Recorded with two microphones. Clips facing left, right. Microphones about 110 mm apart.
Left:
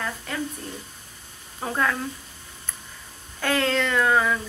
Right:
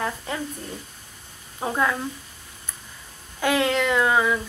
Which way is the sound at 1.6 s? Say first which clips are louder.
Right 2 dB; 10° right (ahead or behind).